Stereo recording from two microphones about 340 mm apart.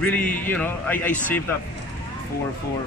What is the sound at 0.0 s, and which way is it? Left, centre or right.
A man's voice, centre.